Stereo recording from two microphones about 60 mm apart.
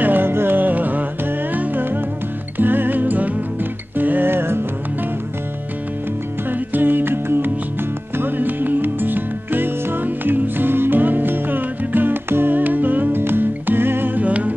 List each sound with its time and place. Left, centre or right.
0.0 s music: right
6.5 s music: right